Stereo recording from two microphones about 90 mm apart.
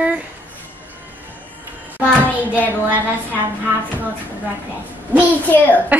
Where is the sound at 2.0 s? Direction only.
20° right (ahead or behind).